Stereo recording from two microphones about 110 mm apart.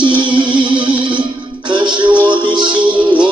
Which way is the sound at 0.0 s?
45° right (ahead or behind).